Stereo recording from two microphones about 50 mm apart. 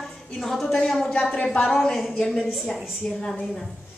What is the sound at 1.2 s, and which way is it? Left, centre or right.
Speech, left.